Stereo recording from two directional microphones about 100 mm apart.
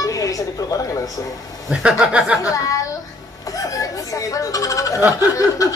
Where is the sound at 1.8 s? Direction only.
10° right (ahead or behind).